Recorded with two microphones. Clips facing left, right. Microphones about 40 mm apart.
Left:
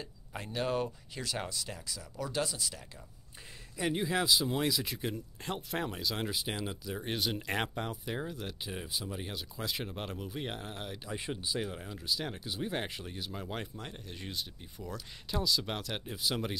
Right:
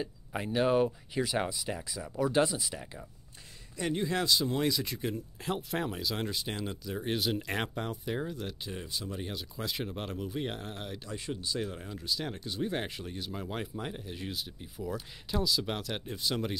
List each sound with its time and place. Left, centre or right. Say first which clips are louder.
0.0 s speech: right 7 dB; centre
3.7 s speech: even; centre
11.1 s speech: even; centre